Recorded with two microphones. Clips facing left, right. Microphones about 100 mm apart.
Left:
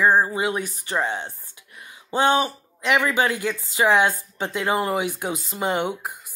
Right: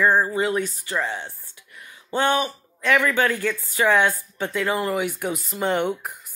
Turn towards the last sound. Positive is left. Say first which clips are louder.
# right 1 dB
turn(degrees=15)  # may be behind; listen again after turning